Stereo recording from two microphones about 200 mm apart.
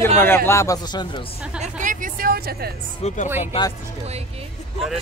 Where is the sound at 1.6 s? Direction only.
40° right (ahead or behind).